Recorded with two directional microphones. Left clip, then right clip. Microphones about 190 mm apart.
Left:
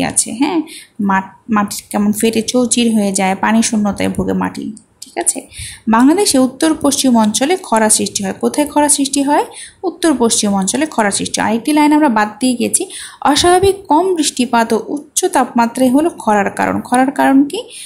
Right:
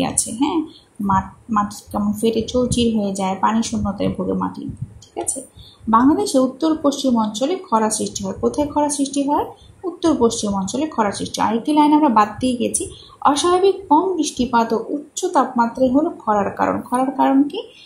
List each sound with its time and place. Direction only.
0.0 s speech: 20° left (ahead or behind)